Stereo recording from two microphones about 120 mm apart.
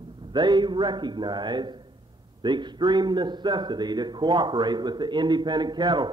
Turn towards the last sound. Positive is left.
turn(degrees=-35)  # may be behind; listen again after turning